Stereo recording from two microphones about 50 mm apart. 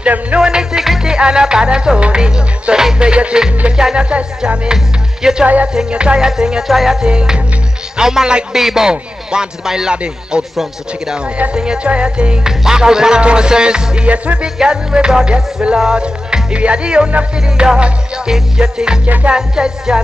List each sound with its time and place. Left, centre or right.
0.0 s music: right
0.4 s music: centre
6.7 s speech: centre
7.1 s music: centre
10.5 s speech: centre
11.1 s music: right
19.0 s music: right
19.3 s music: centre